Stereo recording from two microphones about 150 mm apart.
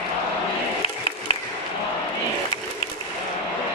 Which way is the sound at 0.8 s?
35° left (ahead or behind).